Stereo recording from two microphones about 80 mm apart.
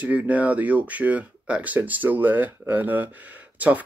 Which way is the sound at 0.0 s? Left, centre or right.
Centre.